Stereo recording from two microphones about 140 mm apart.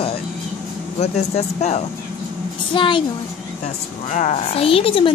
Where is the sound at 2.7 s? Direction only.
35° left (ahead or behind).